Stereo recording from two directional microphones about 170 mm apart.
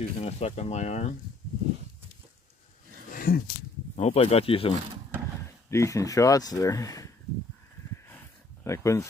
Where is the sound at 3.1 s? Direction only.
60° left (ahead or behind).